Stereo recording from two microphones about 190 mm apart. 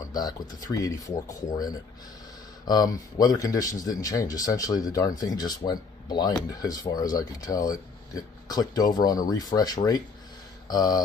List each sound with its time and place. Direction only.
0.0 s speech: 20° left (ahead or behind)